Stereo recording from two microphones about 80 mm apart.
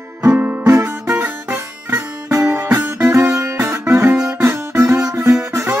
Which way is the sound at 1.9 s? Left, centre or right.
Right.